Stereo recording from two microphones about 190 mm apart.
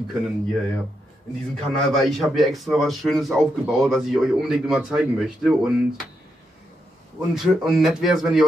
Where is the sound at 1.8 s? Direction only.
Centre (ahead or behind).